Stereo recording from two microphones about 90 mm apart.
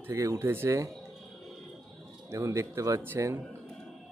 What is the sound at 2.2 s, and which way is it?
A man's voice, 35° right (ahead or behind).